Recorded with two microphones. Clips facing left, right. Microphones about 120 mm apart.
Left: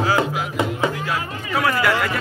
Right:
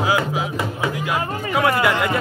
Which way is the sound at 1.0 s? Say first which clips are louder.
Right 3 dB; 20° right (ahead or behind).